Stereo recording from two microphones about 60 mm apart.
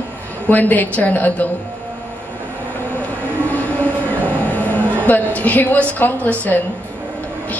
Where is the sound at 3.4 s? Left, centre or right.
Left.